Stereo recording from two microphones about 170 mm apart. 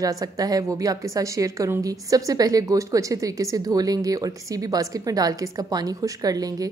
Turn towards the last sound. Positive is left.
turn(degrees=-20)  # may be behind; listen again after turning